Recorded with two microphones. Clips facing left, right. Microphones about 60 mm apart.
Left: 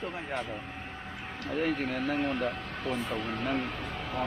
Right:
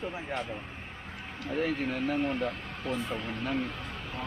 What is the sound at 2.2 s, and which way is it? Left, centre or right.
Speech, left.